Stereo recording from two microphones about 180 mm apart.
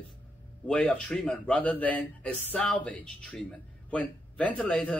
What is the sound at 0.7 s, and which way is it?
Speech, 5° left (ahead or behind).